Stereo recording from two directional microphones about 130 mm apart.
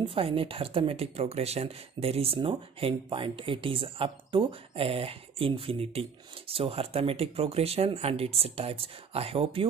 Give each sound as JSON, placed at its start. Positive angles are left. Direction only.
{"t": 0.0, "sound": "speech", "side_deg": -45}